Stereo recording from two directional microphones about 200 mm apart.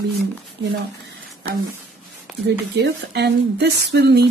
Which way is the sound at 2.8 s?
55° right (ahead or behind).